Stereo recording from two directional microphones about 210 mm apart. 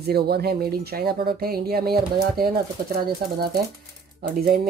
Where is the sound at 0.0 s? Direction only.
50° right (ahead or behind).